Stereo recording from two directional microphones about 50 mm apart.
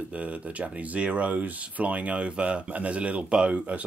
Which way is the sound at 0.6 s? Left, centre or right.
Right.